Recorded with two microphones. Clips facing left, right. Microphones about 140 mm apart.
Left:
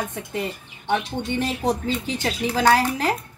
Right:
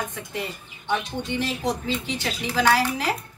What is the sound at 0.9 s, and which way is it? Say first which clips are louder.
Speech: left 3 dB; 50° left (ahead or behind).